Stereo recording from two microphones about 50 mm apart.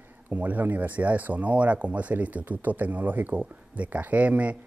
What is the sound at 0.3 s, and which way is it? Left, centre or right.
Speech, right.